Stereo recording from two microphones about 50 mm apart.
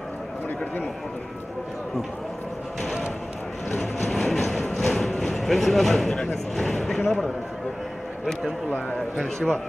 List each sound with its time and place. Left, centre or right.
3.7 s music: centre
5.2 s speech: centre
6.5 s a sound: centre
7.1 s a man's voice: centre
8.3 s speech: centre
9.1 s a man's voice: centre